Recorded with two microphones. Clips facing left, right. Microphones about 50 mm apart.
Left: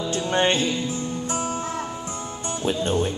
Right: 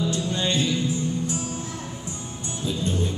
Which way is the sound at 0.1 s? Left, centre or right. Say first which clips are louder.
Left 4 dB; left.